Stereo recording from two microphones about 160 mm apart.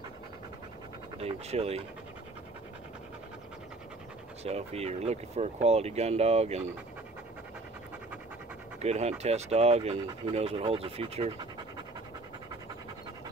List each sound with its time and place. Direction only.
1.2 s speech: 40° right (ahead or behind)
4.5 s speech: 40° right (ahead or behind)
8.8 s speech: 40° right (ahead or behind)